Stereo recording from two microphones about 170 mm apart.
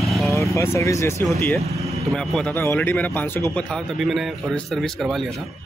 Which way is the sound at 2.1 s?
5° left (ahead or behind).